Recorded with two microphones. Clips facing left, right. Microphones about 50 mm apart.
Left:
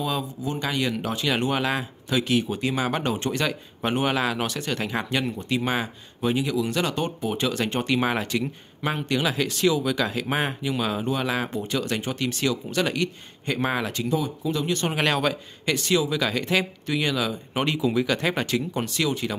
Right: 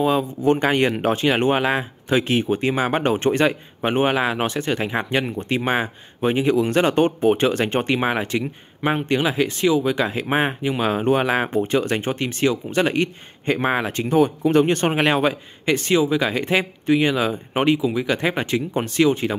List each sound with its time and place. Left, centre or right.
0.0 s speech: right
15.0 s speech: right
17.7 s speech: centre; by 19.3 s right